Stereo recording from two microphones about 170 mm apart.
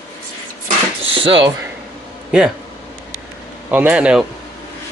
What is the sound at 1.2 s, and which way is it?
Speech, 30° right (ahead or behind).